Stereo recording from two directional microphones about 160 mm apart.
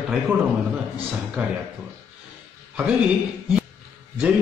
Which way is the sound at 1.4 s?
10° right (ahead or behind).